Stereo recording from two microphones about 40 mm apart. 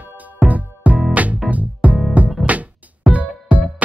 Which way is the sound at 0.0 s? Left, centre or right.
Right.